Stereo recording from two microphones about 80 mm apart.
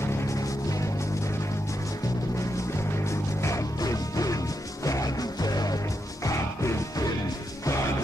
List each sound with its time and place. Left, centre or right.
0.0 s music: left
3.1 s music: left